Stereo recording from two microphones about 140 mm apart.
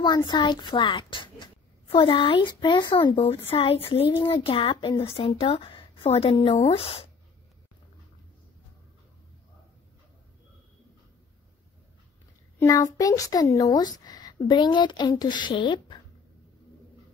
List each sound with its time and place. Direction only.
0.0 s speech: 30° left (ahead or behind)
12.5 s a sound: 25° left (ahead or behind)
12.9 s a woman's voice: 25° left (ahead or behind)